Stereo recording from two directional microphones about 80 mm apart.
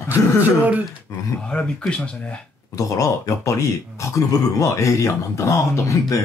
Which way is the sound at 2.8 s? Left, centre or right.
Left.